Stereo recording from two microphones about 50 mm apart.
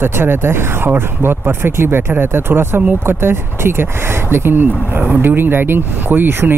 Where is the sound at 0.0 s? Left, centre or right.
Right.